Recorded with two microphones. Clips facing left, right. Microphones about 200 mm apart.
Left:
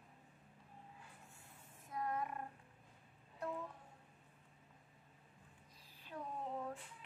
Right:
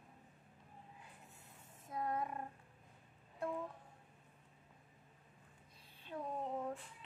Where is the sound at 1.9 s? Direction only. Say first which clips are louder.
Right 2 dB; 25° right (ahead or behind).